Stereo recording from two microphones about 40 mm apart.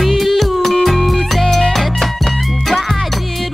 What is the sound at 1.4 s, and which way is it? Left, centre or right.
Music, centre.